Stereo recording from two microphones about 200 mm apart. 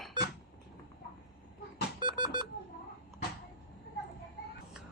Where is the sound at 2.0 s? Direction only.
25° right (ahead or behind).